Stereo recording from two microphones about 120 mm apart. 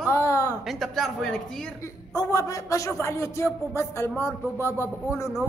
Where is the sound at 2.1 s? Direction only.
25° left (ahead or behind).